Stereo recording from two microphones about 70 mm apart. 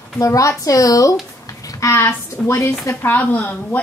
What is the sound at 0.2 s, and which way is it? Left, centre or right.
Speech, left.